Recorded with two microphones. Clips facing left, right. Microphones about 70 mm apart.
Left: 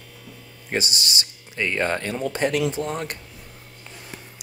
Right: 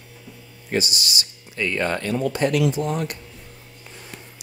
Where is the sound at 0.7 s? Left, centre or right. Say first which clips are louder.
Right 2 dB; left.